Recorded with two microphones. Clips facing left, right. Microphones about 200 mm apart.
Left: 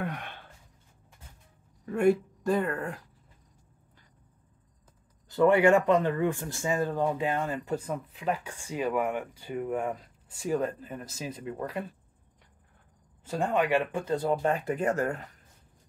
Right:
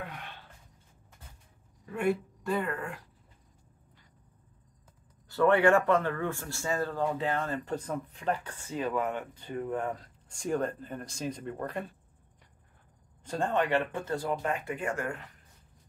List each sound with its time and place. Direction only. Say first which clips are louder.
0.0 s a sound: left 7 dB; 55° left (ahead or behind)
1.9 s speech: left 6 dB; 45° left (ahead or behind)
5.3 s speech: left 2 dB; 15° left (ahead or behind)
13.2 s speech: left 2 dB; 10° left (ahead or behind); by 15.2 s 40° left (ahead or behind)